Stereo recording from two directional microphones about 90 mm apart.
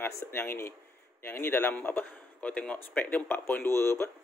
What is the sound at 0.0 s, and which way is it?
Speech, 25° left (ahead or behind).